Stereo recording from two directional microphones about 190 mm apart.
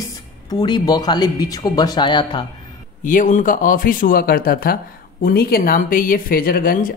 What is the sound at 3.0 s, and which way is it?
Speech, 45° left (ahead or behind).